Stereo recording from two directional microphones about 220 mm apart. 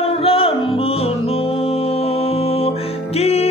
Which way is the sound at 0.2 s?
25° left (ahead or behind).